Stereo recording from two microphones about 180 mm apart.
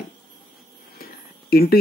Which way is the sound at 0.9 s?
60° left (ahead or behind).